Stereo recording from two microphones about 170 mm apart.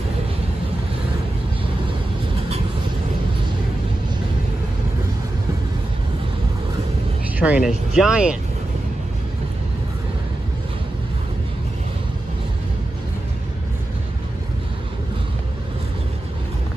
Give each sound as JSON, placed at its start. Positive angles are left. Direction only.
{"t": 7.3, "sound": "speech", "side_deg": -10}